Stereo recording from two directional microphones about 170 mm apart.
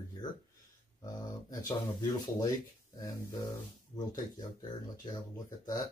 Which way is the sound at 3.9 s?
25° left (ahead or behind).